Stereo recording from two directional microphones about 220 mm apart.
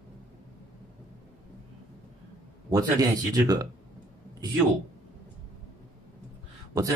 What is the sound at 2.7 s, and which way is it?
Speech, 15° right (ahead or behind).